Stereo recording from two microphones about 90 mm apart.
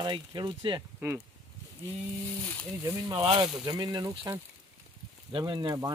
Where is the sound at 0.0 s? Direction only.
55° right (ahead or behind).